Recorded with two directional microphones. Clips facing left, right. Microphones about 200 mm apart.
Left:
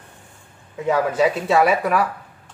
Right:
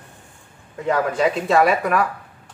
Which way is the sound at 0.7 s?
Centre (ahead or behind).